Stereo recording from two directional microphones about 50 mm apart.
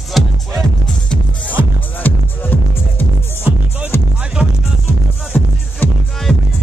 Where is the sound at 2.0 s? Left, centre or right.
Left.